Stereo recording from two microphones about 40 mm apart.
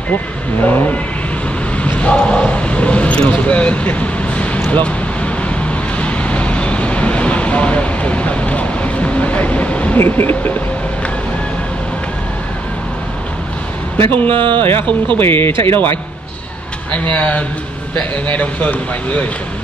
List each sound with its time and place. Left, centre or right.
0.7 s speech: left
2.0 s speech: left
4.6 s vehicle: left
9.9 s speech: left
14.1 s speech: left
14.7 s speech: left
16.9 s speech: left